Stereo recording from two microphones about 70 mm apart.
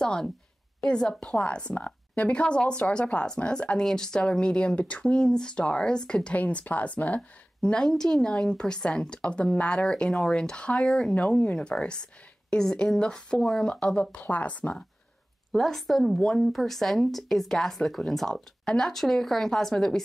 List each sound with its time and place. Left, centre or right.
0.0 s a woman's voice: centre
11.1 s a woman's voice: centre
15.5 s speech: centre